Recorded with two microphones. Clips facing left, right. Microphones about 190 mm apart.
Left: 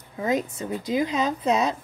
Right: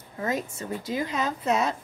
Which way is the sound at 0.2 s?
20° left (ahead or behind).